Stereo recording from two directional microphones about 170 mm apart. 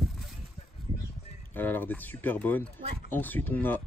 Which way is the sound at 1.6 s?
10° left (ahead or behind).